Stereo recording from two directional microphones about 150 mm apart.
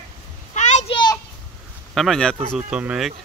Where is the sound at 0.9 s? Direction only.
30° left (ahead or behind).